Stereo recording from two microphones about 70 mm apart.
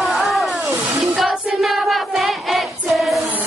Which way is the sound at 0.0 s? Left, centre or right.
Centre.